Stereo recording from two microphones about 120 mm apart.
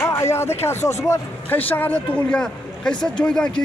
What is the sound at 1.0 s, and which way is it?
A man's voice, 20° left (ahead or behind).